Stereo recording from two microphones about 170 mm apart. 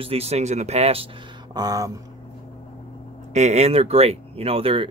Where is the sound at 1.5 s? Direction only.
20° right (ahead or behind).